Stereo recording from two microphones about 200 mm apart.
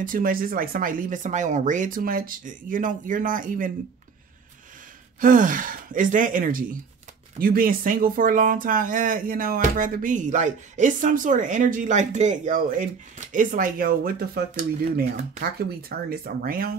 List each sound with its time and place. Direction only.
0.0 s speech: 45° right (ahead or behind)
5.2 s speech: 40° right (ahead or behind)